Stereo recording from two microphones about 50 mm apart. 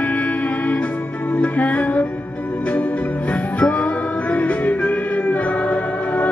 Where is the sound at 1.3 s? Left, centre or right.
Left.